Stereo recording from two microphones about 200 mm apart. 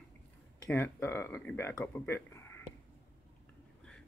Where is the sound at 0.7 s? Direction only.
10° left (ahead or behind).